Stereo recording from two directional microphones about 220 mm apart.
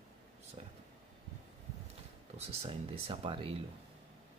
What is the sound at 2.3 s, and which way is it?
Speech, 25° right (ahead or behind).